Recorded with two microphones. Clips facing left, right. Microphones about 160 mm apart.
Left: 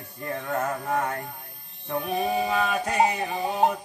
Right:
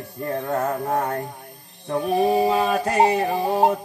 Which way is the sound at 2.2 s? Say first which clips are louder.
Right 7 dB; 35° right (ahead or behind).